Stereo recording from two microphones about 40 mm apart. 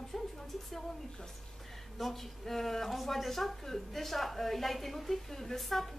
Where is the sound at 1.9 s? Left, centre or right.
Centre.